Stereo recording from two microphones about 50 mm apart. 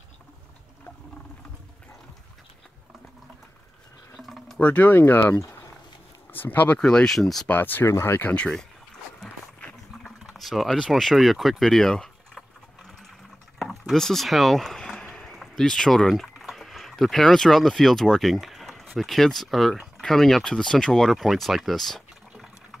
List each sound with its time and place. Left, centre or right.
4.2 s a sound: centre
4.6 s speech: left
5.0 s speech: left
5.4 s a sound: left
6.3 s speech: left
6.8 s speech: centre
7.2 s speech: centre
7.4 s speech: left
7.8 s speech: left
10.0 s boiling: centre
11.0 s a sound: centre
13.6 s rowboat: centre
13.9 s speech: centre